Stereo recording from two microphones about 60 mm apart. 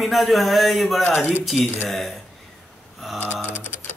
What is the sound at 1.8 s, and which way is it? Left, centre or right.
Mantra, centre.